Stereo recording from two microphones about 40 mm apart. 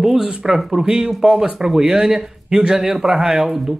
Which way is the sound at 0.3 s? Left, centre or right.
Centre.